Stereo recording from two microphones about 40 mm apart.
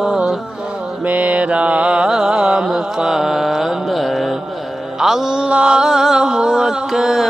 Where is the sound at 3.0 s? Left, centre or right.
Centre.